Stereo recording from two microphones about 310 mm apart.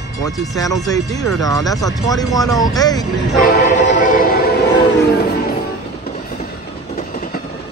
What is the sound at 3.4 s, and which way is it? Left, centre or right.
Train, left.